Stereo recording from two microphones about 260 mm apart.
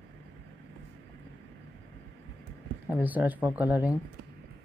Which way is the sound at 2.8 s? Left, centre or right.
Centre.